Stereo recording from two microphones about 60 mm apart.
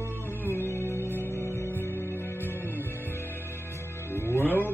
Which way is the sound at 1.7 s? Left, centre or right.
Left.